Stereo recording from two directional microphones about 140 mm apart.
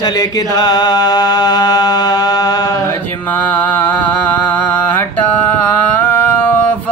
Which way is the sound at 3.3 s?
15° left (ahead or behind).